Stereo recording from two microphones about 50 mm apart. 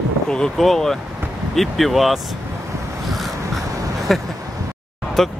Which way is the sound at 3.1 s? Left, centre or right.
Centre.